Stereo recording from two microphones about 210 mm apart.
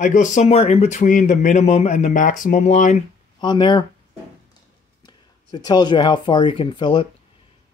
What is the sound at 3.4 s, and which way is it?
Speech, 20° left (ahead or behind).